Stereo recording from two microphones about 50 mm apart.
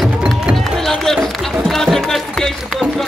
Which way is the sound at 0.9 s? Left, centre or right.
Centre.